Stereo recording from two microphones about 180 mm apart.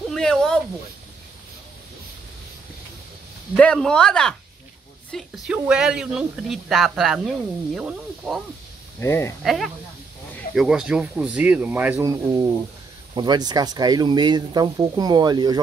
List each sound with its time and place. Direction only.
0.1 s speech: 5° left (ahead or behind)
3.5 s speech: 5° left (ahead or behind)
9.0 s speech: 15° left (ahead or behind)
9.4 s speech: centre (ahead or behind); by 15.6 s 25° right (ahead or behind)